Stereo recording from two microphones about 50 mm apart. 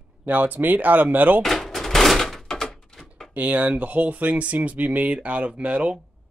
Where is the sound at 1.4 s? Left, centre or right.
Centre.